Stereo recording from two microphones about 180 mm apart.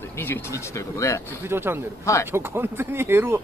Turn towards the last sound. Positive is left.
turn(degrees=-10)  # may be behind; listen again after turning